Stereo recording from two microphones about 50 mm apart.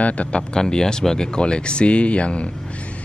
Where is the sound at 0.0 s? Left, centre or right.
Left.